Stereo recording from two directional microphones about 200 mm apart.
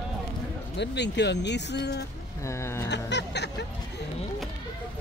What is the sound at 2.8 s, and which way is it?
Speech, 60° left (ahead or behind).